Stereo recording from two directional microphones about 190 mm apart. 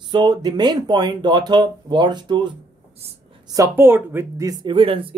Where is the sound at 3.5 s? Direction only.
15° right (ahead or behind).